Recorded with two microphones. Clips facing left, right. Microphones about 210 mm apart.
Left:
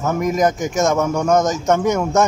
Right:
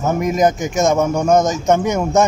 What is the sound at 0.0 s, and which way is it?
A man's voice, 20° right (ahead or behind).